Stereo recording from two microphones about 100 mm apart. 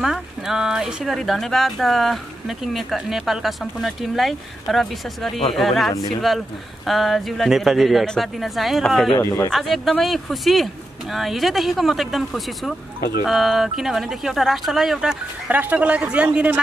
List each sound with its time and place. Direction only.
0.0 s speech: 5° right (ahead or behind)
9.2 s speech: 30° left (ahead or behind)
9.5 s speech: centre (ahead or behind)